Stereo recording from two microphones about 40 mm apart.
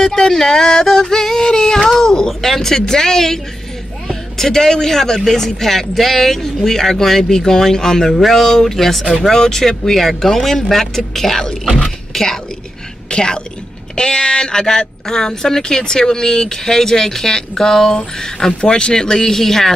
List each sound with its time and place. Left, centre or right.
0.0 s music: centre
4.1 s speech: centre
12.1 s a sound: centre
13.1 s a woman's voice: centre